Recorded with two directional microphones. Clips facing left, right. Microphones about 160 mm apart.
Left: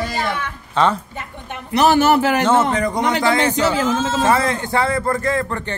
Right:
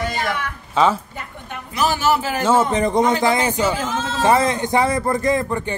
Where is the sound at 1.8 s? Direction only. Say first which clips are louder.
Left 5 dB; 65° left (ahead or behind).